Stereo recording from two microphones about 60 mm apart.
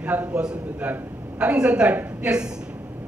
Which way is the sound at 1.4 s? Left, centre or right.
Centre.